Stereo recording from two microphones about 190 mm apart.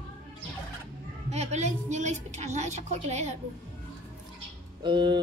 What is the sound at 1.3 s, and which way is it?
Children playing, 35° right (ahead or behind).